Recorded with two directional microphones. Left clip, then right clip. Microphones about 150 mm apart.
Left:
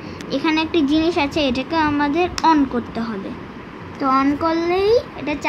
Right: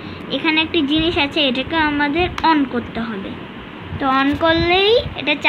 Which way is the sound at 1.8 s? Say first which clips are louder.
Right 1 dB; 15° left (ahead or behind).